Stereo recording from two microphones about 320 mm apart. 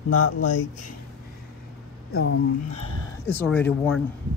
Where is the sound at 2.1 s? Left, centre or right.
Left.